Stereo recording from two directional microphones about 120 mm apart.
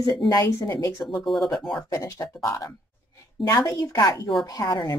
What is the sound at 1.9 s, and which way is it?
A woman's voice, 30° left (ahead or behind).